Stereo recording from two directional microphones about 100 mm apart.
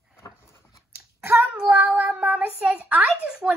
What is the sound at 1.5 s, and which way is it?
A child's voice, 15° right (ahead or behind).